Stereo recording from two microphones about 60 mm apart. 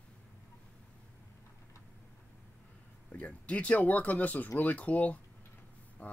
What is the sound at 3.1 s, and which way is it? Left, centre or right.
Speech, left.